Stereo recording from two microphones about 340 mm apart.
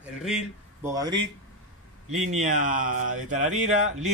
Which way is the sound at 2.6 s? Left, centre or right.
Right.